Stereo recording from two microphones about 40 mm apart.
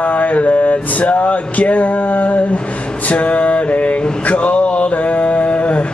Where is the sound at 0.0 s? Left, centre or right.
Left.